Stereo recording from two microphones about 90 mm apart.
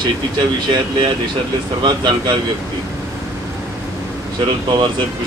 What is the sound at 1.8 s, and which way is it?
Speech, 55° right (ahead or behind).